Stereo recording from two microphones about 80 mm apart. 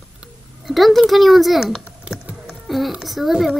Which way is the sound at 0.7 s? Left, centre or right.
Centre.